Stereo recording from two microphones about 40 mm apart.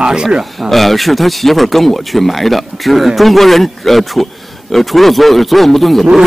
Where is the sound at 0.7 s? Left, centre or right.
Centre.